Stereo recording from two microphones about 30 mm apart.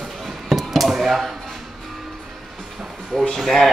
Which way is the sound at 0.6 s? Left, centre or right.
Centre.